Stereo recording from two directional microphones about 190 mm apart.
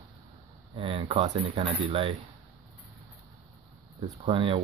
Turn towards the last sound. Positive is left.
turn(degrees=-30)  # may be behind; listen again after turning